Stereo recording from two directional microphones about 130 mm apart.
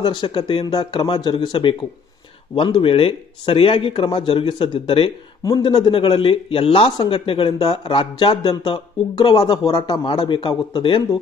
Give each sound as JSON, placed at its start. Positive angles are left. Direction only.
{"t": 0.0, "sound": "speech", "side_deg": 35}
{"t": 5.4, "sound": "speech", "side_deg": 30}
{"t": 7.8, "sound": "speech", "side_deg": 35}